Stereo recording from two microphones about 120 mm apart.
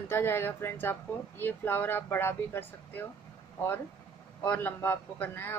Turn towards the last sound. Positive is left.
turn(degrees=15)  # may be behind; listen again after turning